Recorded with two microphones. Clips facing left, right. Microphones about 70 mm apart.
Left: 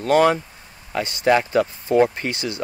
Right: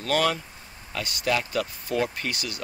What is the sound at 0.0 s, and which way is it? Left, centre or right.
Speech, left.